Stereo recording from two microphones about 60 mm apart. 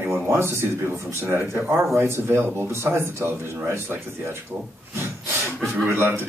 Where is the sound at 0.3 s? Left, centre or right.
Right.